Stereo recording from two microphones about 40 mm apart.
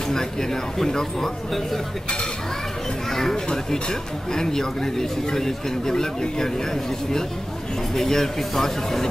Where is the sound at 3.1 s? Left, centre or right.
Centre.